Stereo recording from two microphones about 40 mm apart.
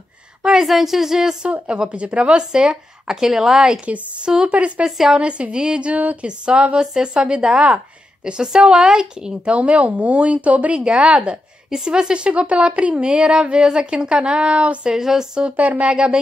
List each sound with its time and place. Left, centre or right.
0.6 s a woman's voice: centre
1.4 s speech: right; by 3.6 s centre
3.8 s speech: right
4.8 s a woman's voice: centre
5.1 s speech: right
5.9 s speech: right
6.2 s speech: right
8.6 s speech: centre
9.5 s speech: right
10.7 s speech: right
15.4 s speech: right
15.9 s speech: right